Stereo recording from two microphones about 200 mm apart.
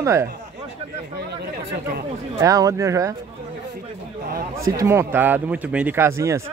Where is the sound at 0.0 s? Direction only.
15° right (ahead or behind).